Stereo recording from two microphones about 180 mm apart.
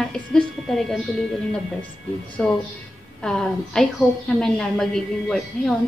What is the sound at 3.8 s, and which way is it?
A woman's voice, centre (ahead or behind).